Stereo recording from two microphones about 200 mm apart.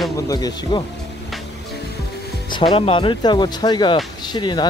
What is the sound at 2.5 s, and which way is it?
Speech, 25° left (ahead or behind).